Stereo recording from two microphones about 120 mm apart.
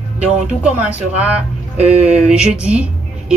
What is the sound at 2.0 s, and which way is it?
Speech, 10° right (ahead or behind).